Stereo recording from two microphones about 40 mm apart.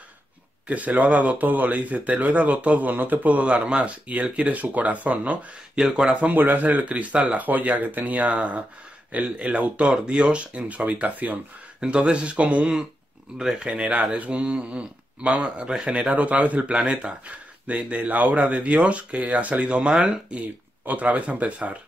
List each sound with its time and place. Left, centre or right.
0.7 s speech: right
3.4 s speech: right
5.8 s speech: centre
6.3 s speech: right
6.7 s speech: right
10.9 s speech: right
11.8 s speech: right
13.4 s speech: centre
16.1 s speech: right
20.3 s speech: right